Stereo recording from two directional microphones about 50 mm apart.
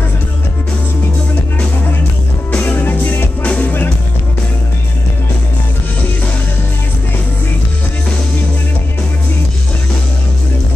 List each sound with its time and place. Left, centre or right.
2.7 s music: left